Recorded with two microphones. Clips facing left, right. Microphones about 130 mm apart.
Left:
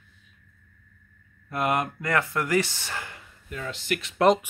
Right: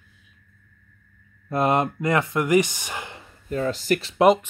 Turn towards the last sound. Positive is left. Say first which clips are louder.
# right 8 dB
turn(degrees=-40)  # may be behind; listen again after turning